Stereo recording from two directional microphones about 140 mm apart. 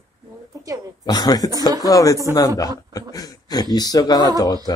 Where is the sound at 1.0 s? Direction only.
30° left (ahead or behind).